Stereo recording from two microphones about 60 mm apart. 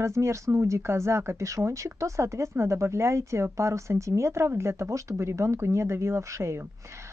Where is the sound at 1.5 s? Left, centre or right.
Right.